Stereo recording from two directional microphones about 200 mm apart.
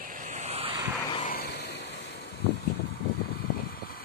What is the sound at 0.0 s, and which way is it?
Vehicle, 40° right (ahead or behind).